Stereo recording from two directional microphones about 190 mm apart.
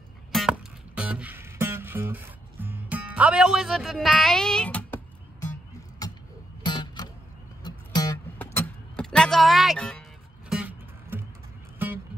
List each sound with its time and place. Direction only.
0.3 s music: centre (ahead or behind)
6.6 s music: 25° left (ahead or behind)
8.4 s music: 10° left (ahead or behind)
10.5 s music: 10° right (ahead or behind)